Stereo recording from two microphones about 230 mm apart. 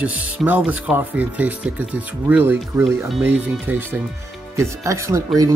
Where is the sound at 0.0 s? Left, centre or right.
Centre.